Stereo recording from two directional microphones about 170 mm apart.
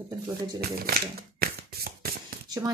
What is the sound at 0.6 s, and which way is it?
Speech, 60° right (ahead or behind).